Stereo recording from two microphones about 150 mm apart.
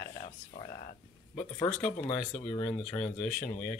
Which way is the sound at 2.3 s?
40° left (ahead or behind).